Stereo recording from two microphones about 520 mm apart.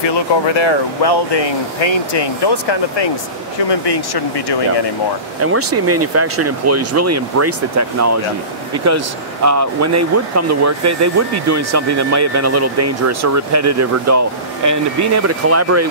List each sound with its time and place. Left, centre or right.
0.0 s speech: left
5.4 s speech: right